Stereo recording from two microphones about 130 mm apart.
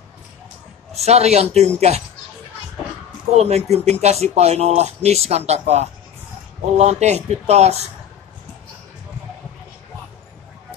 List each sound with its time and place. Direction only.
0.9 s speech: 55° right (ahead or behind)
3.3 s speech: 55° right (ahead or behind)